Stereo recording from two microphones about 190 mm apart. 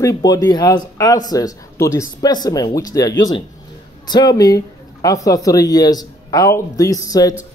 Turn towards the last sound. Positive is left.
turn(degrees=20)  # may be behind; listen again after turning